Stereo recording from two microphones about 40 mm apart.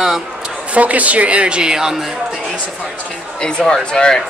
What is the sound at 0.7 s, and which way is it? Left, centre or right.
Speech, right.